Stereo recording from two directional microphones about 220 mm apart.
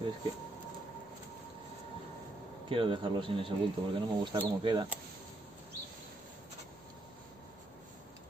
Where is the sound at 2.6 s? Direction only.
25° right (ahead or behind).